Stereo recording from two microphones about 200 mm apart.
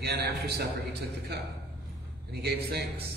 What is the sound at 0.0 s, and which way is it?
Speech, 55° right (ahead or behind).